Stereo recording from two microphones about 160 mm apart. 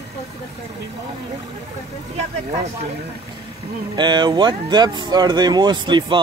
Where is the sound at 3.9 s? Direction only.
30° right (ahead or behind).